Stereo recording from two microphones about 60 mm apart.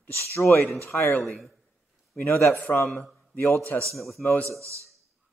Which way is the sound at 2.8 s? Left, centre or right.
Centre.